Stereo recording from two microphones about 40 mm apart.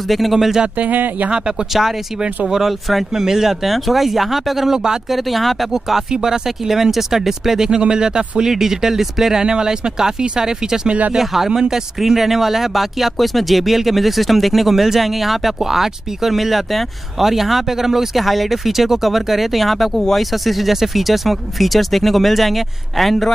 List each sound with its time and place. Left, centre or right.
0.1 s speech: centre
0.7 s speech: right
1.7 s speech: centre
5.1 s speech: centre
10.9 s speech: right
11.1 s speech: centre